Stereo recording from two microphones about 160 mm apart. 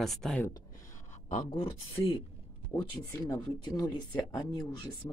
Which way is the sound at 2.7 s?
15° left (ahead or behind).